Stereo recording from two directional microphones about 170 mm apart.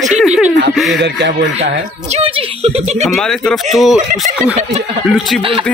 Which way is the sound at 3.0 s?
Centre (ahead or behind).